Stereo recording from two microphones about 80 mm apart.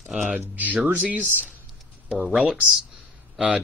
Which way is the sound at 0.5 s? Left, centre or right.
Centre.